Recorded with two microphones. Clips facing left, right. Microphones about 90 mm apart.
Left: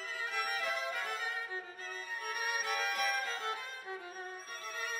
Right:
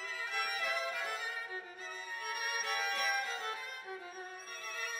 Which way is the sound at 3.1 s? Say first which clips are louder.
Left 1 dB; 35° left (ahead or behind).